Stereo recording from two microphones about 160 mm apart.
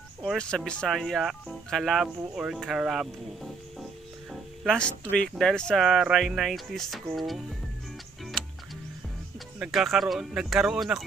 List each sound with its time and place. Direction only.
0.2 s speech: 5° left (ahead or behind)
8.4 s music: centre (ahead or behind)
9.6 s speech: centre (ahead or behind)